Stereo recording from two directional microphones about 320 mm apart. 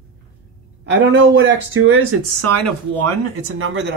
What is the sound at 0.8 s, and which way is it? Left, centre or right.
Speech, right.